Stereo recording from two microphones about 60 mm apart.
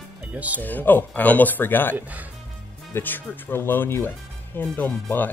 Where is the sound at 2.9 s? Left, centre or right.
Left.